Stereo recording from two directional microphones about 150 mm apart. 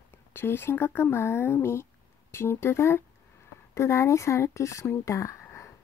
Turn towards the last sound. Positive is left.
turn(degrees=15)  # may be behind; listen again after turning